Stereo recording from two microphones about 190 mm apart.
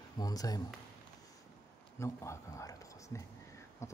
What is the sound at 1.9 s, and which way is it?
Speech, 15° left (ahead or behind).